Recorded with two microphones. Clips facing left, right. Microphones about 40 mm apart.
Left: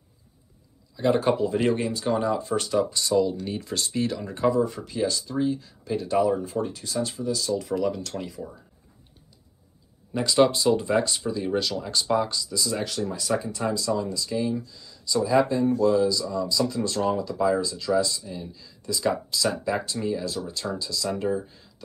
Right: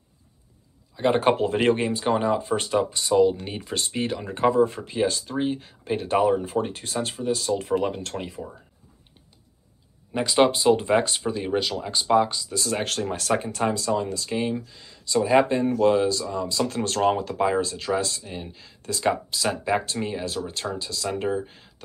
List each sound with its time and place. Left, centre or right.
0.9 s speech: right
1.3 s speech: right
10.1 s speech: right
12.5 s speech: right
21.5 s a sound: right